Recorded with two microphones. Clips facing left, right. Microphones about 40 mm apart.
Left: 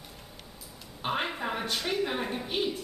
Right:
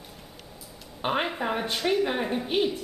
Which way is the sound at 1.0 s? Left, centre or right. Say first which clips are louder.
Right 4 dB; centre.